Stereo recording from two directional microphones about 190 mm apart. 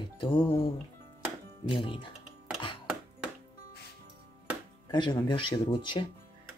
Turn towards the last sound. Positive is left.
turn(degrees=25)  # may be behind; listen again after turning